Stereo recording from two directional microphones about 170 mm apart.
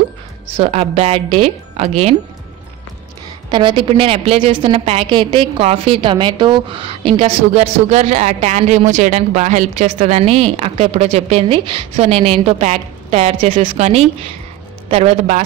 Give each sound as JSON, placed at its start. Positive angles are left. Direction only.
{"t": 0.6, "sound": "a woman's voice", "side_deg": -40}
{"t": 3.4, "sound": "a woman's voice", "side_deg": -30}